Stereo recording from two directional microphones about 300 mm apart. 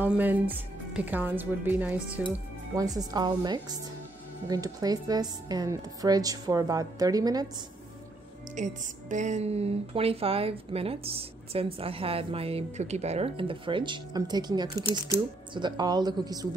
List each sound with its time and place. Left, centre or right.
0.0 s speech: centre
8.5 s speech: right